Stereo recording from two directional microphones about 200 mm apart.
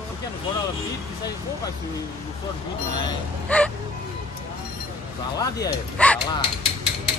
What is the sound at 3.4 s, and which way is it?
Music, 5° left (ahead or behind).